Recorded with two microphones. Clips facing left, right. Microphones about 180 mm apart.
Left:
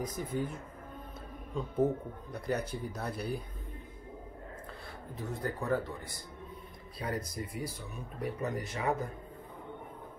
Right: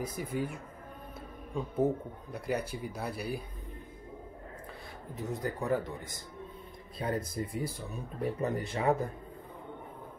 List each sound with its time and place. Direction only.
0.0 s speech: 10° right (ahead or behind)
1.5 s speech: 10° right (ahead or behind)
5.2 s speech: 15° right (ahead or behind)
7.0 s speech: 25° right (ahead or behind)